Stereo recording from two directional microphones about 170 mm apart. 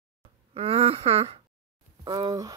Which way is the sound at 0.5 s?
35° right (ahead or behind).